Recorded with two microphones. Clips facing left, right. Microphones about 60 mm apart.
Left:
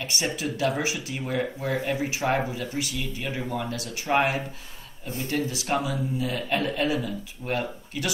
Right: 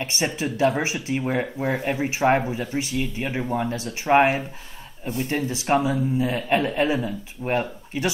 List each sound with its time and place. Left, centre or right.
0.0 s speech: right